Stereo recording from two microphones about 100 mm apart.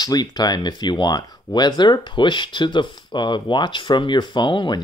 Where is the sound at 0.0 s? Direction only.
40° left (ahead or behind).